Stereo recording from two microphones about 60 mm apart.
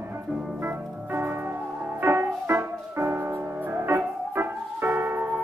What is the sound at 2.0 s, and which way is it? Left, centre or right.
Music, right.